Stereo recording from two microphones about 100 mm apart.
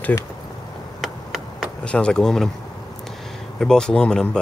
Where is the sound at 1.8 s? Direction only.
10° left (ahead or behind).